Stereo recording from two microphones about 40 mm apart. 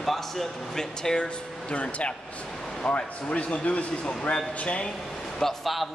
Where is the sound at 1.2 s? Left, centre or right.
Left.